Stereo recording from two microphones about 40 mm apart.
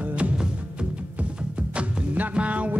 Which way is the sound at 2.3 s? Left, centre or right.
Right.